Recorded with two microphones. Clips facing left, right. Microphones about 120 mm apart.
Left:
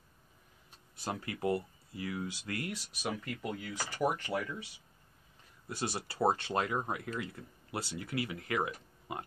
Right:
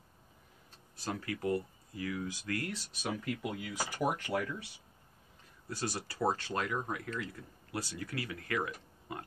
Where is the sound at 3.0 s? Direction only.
5° right (ahead or behind).